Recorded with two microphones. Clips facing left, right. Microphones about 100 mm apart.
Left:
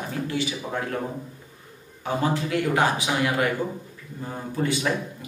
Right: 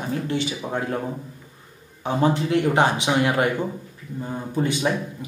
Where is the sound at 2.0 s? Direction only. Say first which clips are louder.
Right 4 dB; 20° right (ahead or behind).